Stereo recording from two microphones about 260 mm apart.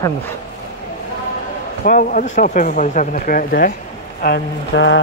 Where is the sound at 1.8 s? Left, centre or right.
Left.